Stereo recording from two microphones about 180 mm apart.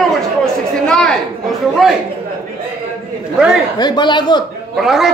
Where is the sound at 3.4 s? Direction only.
5° right (ahead or behind).